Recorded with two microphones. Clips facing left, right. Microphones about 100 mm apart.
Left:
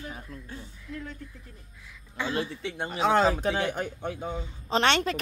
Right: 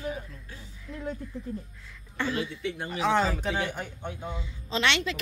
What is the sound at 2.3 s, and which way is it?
Speech, 35° left (ahead or behind).